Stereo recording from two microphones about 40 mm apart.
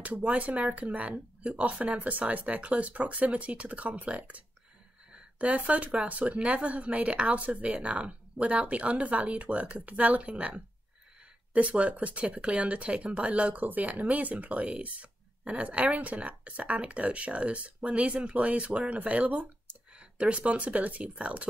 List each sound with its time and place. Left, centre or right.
0.0 s speech: right
19.9 s a sound: right
20.3 s speech: right